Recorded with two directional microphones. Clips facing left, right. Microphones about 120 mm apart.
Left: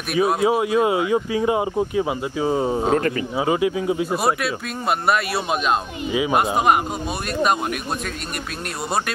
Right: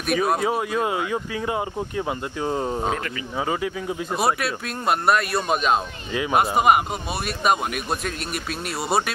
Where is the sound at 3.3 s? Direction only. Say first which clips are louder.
Left 3 dB; 15° left (ahead or behind).